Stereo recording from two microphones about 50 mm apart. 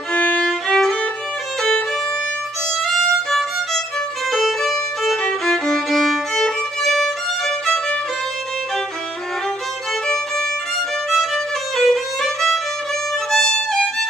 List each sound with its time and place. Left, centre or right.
0.1 s music: left
0.5 s music: centre
2.8 s violin: centre
11.1 s violin: centre